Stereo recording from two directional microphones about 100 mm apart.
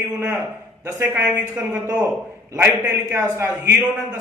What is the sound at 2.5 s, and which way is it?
A man's voice, 25° right (ahead or behind).